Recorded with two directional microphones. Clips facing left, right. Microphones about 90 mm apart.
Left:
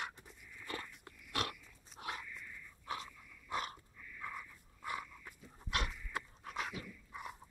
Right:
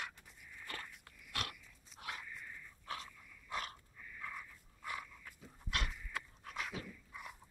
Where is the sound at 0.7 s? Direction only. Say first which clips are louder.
Left 4 dB; 25° left (ahead or behind).